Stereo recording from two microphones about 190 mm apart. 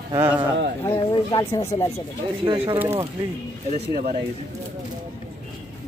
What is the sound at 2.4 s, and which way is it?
Speech, 30° right (ahead or behind).